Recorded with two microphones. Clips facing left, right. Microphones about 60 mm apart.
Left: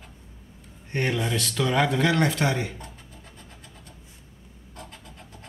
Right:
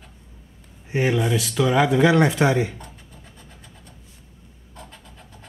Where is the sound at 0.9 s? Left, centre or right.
Centre.